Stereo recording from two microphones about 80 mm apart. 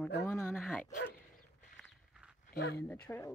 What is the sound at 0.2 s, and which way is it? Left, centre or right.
Speech, left.